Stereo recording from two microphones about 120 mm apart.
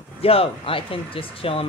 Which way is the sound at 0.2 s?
50° left (ahead or behind).